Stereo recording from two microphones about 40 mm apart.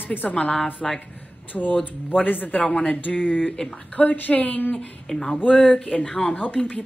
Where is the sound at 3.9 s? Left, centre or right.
Left.